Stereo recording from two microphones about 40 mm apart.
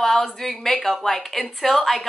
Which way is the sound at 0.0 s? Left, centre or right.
Centre.